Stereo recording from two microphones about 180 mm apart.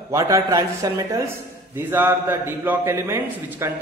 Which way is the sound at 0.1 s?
20° right (ahead or behind).